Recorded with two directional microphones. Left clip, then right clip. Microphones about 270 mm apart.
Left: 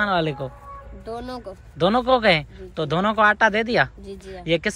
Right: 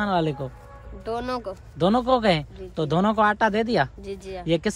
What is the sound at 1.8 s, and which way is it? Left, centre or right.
Speech, centre.